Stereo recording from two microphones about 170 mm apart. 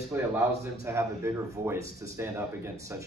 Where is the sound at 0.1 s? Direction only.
15° right (ahead or behind).